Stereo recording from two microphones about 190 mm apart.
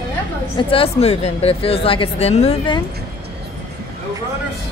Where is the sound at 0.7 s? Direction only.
30° left (ahead or behind).